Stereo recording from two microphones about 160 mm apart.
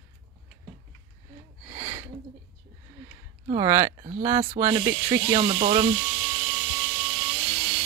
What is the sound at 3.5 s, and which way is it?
Speech, 20° right (ahead or behind).